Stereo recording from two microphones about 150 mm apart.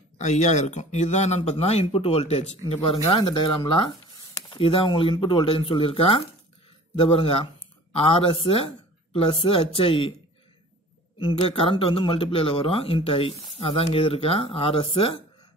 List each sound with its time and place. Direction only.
0.2 s speech: 50° left (ahead or behind)
11.3 s speech: 40° left (ahead or behind)